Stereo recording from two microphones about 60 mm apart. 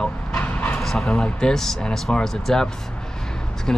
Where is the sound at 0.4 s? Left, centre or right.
Left.